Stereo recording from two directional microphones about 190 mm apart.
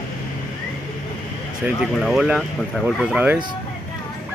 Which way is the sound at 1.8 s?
Centre (ahead or behind).